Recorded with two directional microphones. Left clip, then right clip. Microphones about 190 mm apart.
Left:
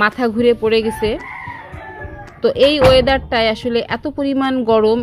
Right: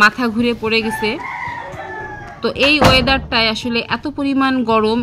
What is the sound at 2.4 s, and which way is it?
Speech, 30° left (ahead or behind).